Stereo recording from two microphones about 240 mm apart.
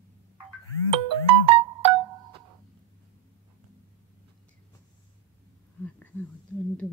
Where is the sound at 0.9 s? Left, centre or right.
Right.